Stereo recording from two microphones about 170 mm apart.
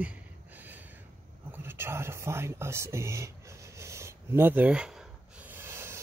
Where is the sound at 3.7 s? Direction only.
15° right (ahead or behind).